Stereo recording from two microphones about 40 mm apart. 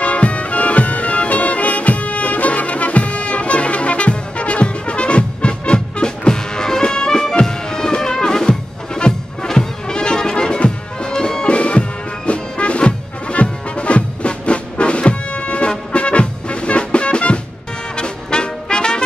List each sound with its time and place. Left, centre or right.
0.0 s music: left; by 11.4 s centre
11.4 s music: left